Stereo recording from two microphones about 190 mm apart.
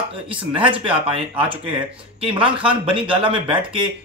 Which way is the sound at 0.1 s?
25° right (ahead or behind).